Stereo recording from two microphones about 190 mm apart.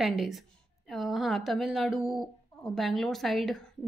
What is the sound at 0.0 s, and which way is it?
A woman's voice, centre (ahead or behind).